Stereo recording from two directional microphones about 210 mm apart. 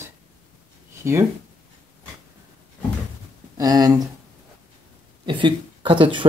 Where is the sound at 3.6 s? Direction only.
20° right (ahead or behind).